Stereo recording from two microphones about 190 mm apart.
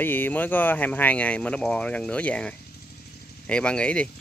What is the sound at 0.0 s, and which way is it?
Speech, 10° left (ahead or behind).